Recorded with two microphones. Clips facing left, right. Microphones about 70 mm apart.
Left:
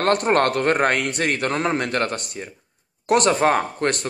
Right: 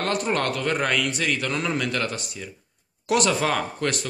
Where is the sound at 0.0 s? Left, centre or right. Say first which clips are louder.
Left 6 dB; left.